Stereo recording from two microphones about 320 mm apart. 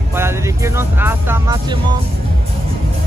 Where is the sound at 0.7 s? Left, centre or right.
Centre.